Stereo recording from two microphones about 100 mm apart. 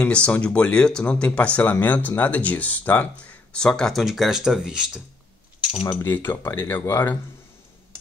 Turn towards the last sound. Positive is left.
turn(degrees=20)  # may be behind; listen again after turning